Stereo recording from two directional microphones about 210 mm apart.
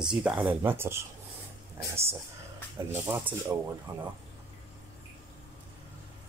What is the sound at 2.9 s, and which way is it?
Speech, 10° right (ahead or behind).